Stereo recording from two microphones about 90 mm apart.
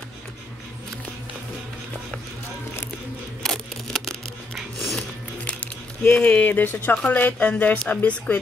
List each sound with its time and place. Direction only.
3.4 s scissors: 5° left (ahead or behind)
5.5 s a sound: 20° left (ahead or behind)
6.1 s a woman's voice: 15° left (ahead or behind)